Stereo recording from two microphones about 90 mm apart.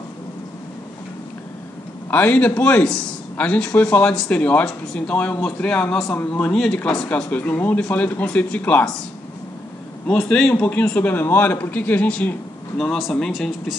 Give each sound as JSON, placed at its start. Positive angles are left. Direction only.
{"t": 2.0, "sound": "a man's voice", "side_deg": 20}
{"t": 10.0, "sound": "a man's voice", "side_deg": 10}